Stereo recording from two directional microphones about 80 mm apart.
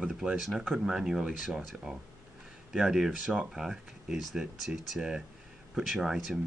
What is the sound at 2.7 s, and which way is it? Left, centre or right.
Speech, centre.